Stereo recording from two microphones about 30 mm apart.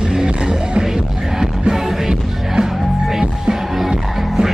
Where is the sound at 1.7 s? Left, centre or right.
Centre.